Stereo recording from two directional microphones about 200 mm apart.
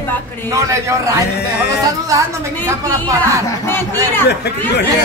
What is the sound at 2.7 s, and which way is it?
Speech, 15° right (ahead or behind).